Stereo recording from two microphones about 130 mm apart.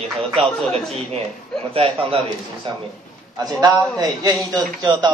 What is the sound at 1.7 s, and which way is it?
Speech, 45° right (ahead or behind).